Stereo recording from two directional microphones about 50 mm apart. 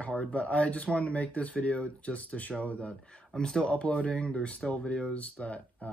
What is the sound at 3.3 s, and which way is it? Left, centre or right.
Speech, centre.